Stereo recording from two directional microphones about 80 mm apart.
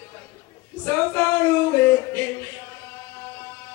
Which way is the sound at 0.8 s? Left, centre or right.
Left.